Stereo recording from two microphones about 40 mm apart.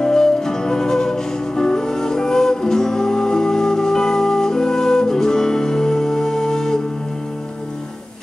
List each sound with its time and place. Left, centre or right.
0.0 s music: centre